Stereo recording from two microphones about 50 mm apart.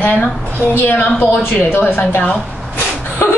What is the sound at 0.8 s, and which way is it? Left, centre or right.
Speech, left.